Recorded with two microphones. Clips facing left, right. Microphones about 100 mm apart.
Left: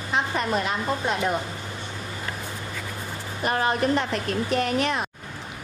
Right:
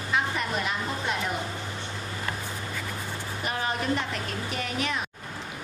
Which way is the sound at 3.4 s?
50° left (ahead or behind).